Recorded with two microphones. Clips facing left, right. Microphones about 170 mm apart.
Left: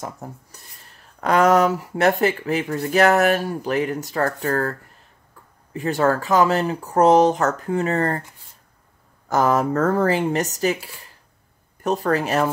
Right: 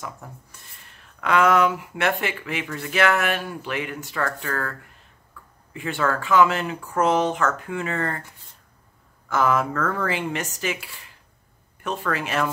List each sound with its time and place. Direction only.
0.0 s speech: 40° left (ahead or behind)
9.3 s speech: 40° left (ahead or behind)